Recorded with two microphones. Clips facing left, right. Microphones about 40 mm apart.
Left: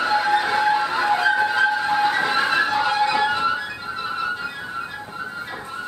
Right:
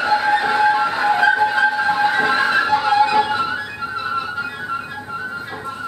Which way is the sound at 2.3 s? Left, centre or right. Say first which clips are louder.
Right 3 dB; right.